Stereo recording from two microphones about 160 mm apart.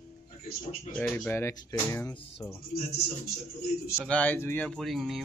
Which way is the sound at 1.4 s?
20° left (ahead or behind).